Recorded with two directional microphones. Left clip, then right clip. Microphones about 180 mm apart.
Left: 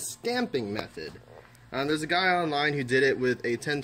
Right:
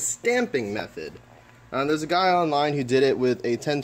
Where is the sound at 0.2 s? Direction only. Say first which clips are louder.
Right 6 dB; 5° left (ahead or behind).